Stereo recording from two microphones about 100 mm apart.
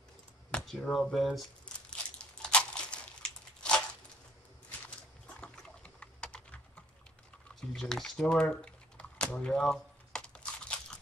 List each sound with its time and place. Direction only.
0.5 s speech: 10° left (ahead or behind)
1.9 s crumpling: 10° left (ahead or behind)
5.4 s typing: 10° left (ahead or behind)
7.7 s a sound: 5° left (ahead or behind)